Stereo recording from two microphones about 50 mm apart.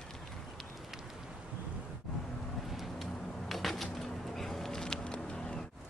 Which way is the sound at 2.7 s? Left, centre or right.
Centre.